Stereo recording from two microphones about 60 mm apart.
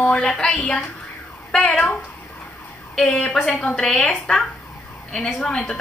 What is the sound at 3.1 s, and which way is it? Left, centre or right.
A woman's voice, centre.